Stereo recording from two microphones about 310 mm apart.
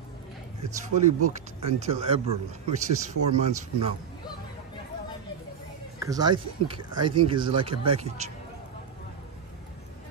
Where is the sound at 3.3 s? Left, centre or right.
Right.